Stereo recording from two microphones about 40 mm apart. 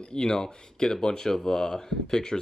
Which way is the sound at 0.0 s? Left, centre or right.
Centre.